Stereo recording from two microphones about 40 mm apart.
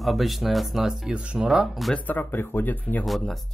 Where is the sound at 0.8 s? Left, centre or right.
Centre.